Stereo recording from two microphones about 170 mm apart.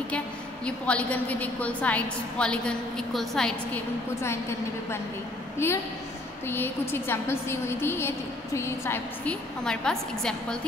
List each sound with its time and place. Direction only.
0.7 s a woman's voice: 5° left (ahead or behind)
4.2 s a woman's voice: 15° left (ahead or behind)